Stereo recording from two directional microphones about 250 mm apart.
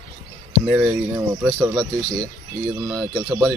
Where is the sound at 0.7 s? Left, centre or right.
Centre.